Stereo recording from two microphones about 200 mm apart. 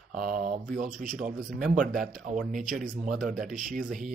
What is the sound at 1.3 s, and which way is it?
Speech, 5° right (ahead or behind).